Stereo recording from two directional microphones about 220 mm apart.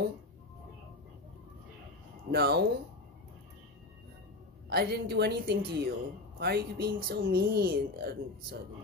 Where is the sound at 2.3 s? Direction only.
45° right (ahead or behind).